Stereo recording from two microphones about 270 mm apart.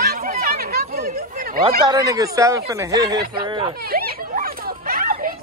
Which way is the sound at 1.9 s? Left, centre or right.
Centre.